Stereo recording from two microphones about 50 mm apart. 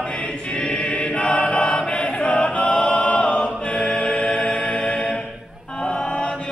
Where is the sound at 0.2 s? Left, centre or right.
Left.